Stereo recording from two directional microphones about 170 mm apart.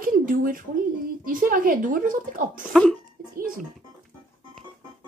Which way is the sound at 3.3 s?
55° right (ahead or behind).